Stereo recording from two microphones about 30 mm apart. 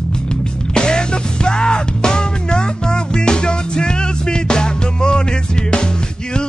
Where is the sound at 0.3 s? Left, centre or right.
Left.